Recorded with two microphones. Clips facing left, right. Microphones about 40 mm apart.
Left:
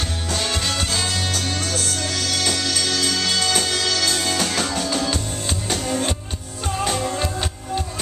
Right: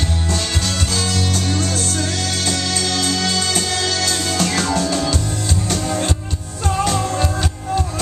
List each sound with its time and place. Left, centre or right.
0.4 s music: centre
2.0 s music: right
2.8 s music: left
7.0 s music: centre